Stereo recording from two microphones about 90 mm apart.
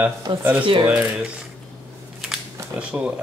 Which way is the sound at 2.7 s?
15° right (ahead or behind).